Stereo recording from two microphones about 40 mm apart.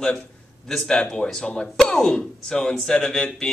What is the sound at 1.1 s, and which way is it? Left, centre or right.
Speech, centre.